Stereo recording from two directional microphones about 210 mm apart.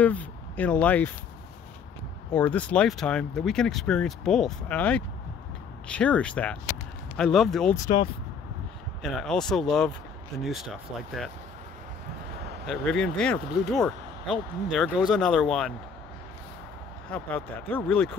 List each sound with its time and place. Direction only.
0.0 s speech: 5° left (ahead or behind)
2.3 s speech: 5° left (ahead or behind)
7.7 s speech: 20° left (ahead or behind)
9.0 s speech: 5° left (ahead or behind)
12.6 s speech: centre (ahead or behind)
17.1 s speech: 10° left (ahead or behind)